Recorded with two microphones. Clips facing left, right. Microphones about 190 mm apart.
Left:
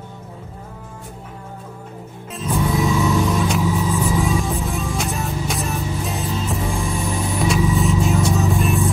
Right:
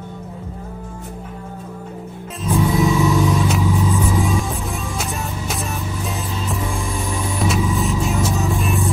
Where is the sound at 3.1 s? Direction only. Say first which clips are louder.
Right 1 dB; centre (ahead or behind).